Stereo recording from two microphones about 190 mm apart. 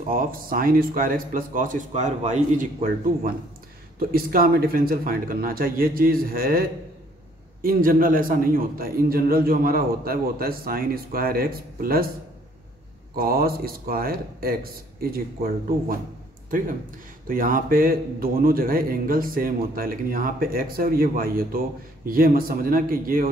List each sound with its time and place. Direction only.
0.1 s a man's voice: 50° right (ahead or behind)
13.1 s a man's voice: 50° right (ahead or behind)